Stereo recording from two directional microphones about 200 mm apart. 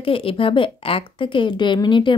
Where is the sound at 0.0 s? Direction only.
25° left (ahead or behind).